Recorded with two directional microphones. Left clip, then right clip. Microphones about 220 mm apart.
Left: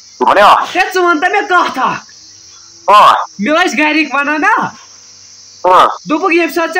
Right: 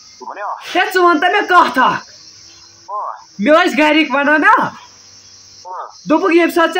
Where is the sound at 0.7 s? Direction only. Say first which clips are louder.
Left 1 dB; 10° right (ahead or behind).